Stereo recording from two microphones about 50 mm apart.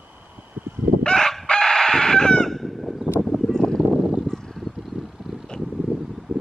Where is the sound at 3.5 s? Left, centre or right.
Centre.